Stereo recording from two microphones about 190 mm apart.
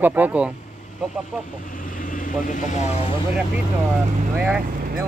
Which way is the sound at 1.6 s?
45° left (ahead or behind).